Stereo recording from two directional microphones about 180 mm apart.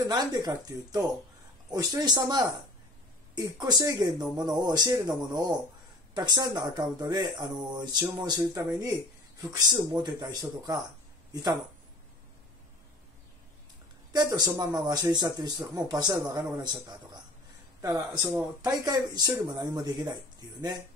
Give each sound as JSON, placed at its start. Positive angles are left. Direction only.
{"t": 0.0, "sound": "speech", "side_deg": -20}
{"t": 14.1, "sound": "speech", "side_deg": -20}